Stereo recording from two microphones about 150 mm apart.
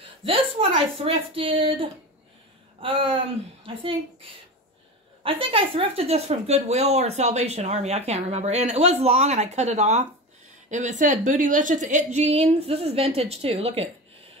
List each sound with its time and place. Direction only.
0.2 s speech: 35° right (ahead or behind)